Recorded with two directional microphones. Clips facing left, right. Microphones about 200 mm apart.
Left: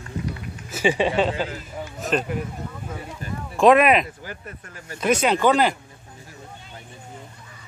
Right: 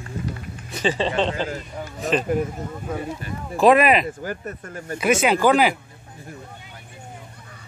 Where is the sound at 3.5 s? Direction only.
Centre (ahead or behind).